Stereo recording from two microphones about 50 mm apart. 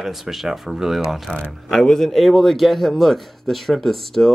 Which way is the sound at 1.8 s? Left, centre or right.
Centre.